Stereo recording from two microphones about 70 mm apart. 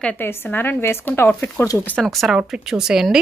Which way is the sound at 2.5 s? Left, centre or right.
Centre.